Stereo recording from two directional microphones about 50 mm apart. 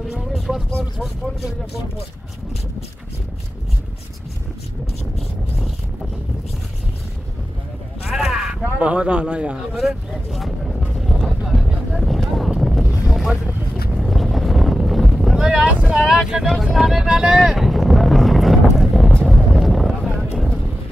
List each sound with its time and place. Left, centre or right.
0.0 s a sound: centre
0.9 s speech: centre
8.1 s a sound: centre
8.7 s a man's voice: right
9.7 s speech: centre
11.0 s music: centre
11.5 s a sound: centre
13.9 s vehicle: centre
15.4 s boat: centre
16.0 s speech: centre
17.1 s vehicle: centre
19.2 s boat: centre